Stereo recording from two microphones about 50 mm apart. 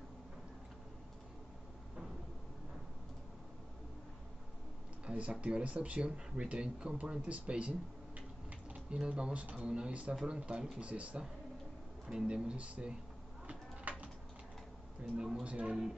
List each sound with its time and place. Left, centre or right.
5.0 s speech: right
13.5 s a sound: right
15.4 s speech: right